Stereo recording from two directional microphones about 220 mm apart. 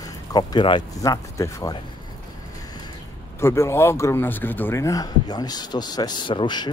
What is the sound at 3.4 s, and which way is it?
Speech, 10° left (ahead or behind).